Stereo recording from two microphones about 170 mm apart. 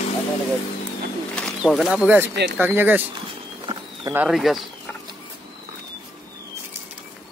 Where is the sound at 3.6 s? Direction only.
30° right (ahead or behind).